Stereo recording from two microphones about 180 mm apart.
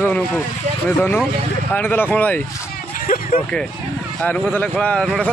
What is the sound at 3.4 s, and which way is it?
A man's voice, 5° left (ahead or behind).